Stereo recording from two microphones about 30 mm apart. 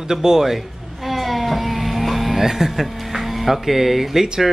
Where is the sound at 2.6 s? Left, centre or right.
Centre.